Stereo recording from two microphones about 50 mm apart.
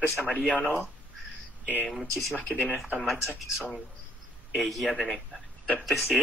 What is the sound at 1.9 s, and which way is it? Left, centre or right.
Speech, centre.